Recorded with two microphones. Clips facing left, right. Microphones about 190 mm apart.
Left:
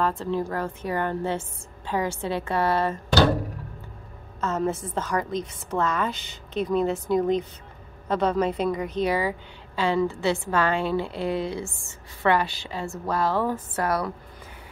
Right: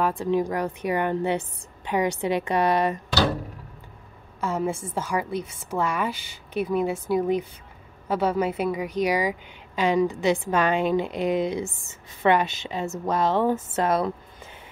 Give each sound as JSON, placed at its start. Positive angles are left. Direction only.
{"t": 0.0, "sound": "a woman's voice", "side_deg": -15}
{"t": 4.4, "sound": "a woman's voice", "side_deg": -10}